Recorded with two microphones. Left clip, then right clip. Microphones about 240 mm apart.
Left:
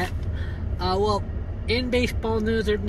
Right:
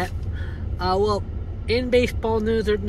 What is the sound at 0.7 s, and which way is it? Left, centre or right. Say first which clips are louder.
Speech: right 2 dB; centre.